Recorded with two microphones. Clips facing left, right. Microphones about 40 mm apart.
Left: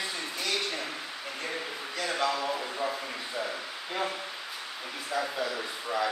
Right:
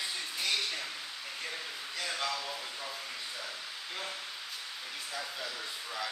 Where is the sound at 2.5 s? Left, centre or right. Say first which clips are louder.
Left 9 dB; left.